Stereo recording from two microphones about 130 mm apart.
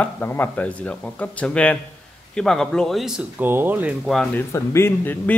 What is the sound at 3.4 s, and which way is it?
Speech, 15° right (ahead or behind).